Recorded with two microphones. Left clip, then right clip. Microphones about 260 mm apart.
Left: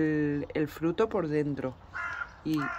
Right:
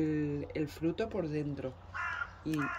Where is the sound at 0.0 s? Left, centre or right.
Centre.